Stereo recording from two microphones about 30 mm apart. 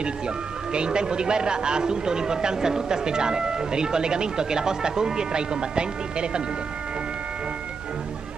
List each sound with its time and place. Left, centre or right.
0.7 s a man's voice: right